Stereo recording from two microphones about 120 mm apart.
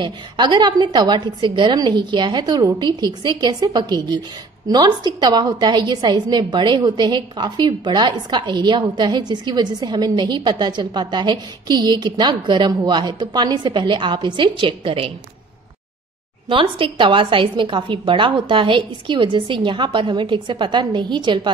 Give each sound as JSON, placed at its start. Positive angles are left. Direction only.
{"t": 0.0, "sound": "a woman's voice", "side_deg": -40}
{"t": 16.4, "sound": "a woman's voice", "side_deg": -45}